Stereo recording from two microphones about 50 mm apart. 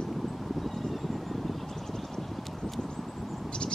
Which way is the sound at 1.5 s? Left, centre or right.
Centre.